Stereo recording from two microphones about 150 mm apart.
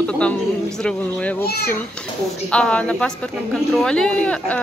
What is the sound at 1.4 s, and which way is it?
Speech, 90° left.